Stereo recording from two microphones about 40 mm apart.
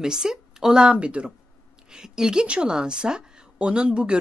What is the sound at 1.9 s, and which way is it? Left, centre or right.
A woman's voice, centre.